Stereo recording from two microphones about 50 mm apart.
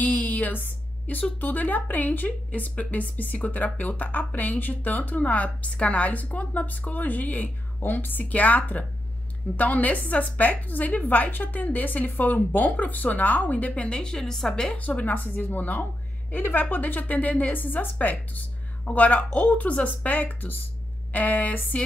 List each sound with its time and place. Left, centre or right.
0.0 s a sound: left
1.4 s a woman's voice: left; by 14.8 s centre
14.8 s a woman's voice: left